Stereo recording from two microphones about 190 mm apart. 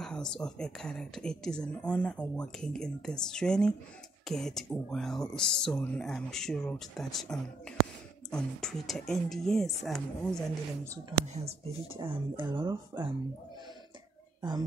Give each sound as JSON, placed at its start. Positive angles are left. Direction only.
{"t": 0.0, "sound": "speech", "side_deg": 5}
{"t": 11.3, "sound": "speech", "side_deg": -30}